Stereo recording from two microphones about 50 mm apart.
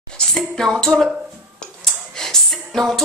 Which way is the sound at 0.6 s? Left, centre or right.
Centre.